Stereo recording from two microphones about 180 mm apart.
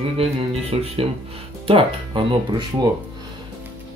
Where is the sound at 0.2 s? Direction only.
35° right (ahead or behind).